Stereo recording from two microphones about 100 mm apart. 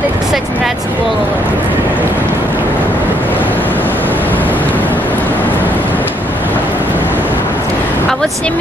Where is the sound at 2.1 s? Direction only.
20° right (ahead or behind).